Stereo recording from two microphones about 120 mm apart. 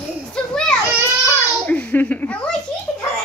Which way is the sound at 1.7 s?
15° left (ahead or behind).